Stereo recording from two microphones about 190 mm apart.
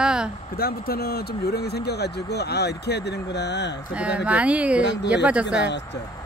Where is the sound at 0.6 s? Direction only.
55° left (ahead or behind).